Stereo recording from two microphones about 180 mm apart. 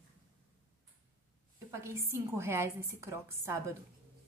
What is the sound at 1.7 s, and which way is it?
A woman's voice, 15° right (ahead or behind).